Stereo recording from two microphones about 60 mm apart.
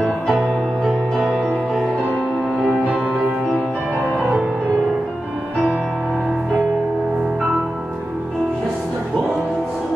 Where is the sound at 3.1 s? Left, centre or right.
Centre.